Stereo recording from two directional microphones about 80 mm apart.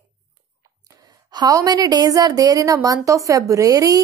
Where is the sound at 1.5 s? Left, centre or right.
Right.